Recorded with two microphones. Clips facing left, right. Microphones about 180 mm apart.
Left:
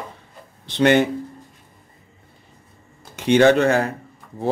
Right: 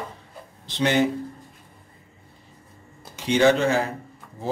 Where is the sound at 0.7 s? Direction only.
60° left (ahead or behind).